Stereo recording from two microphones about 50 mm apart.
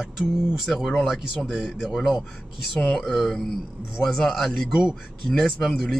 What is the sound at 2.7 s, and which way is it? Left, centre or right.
Speech, centre.